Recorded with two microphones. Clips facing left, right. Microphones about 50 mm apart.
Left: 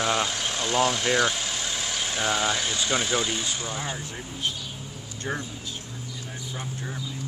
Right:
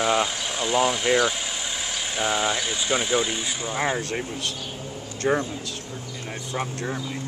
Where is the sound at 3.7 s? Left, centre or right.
Right.